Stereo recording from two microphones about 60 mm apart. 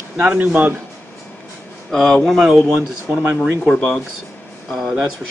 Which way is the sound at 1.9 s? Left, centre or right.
Centre.